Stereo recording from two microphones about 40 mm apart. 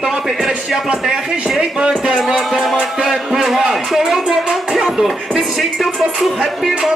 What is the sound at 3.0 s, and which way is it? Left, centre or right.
Speech, centre.